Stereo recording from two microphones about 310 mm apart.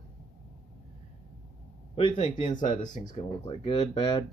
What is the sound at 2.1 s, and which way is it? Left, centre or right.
Speech, centre.